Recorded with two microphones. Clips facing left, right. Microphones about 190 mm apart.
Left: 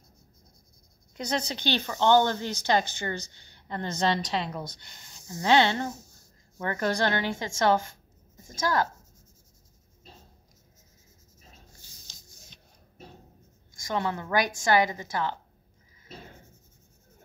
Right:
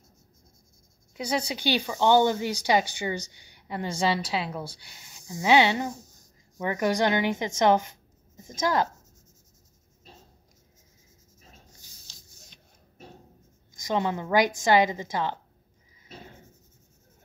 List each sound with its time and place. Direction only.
1.1 s speech: 10° right (ahead or behind)
13.7 s a woman's voice: 20° right (ahead or behind)